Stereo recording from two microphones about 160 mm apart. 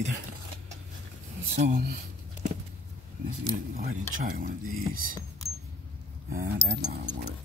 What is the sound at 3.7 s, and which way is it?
Speech, 65° right (ahead or behind).